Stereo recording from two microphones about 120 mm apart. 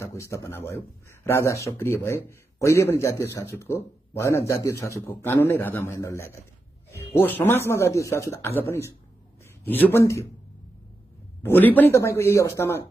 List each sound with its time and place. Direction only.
0.0 s a man's voice: 25° left (ahead or behind)
11.4 s a man's voice: 15° left (ahead or behind)